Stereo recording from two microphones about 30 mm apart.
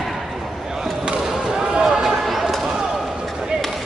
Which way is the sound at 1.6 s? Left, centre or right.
Right.